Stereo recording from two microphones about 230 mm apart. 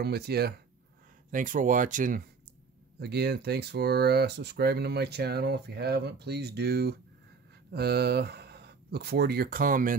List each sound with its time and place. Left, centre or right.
0.0 s speech: right
3.0 s speech: right